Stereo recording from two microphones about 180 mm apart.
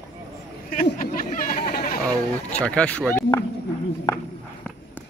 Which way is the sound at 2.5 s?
5° left (ahead or behind).